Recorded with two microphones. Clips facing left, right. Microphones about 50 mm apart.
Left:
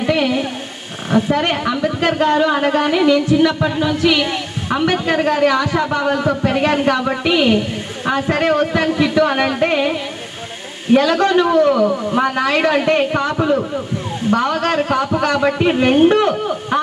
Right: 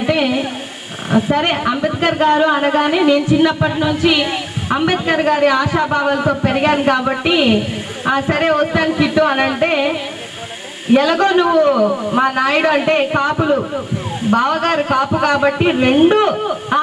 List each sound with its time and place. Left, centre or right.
0.1 s a sound: right
1.3 s speech: right
11.0 s speech: right
15.7 s speech: centre